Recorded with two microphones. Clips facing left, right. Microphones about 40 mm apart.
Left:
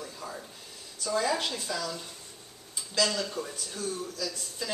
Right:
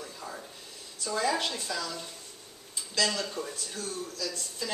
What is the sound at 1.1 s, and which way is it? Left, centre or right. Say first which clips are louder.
Speech: even; centre.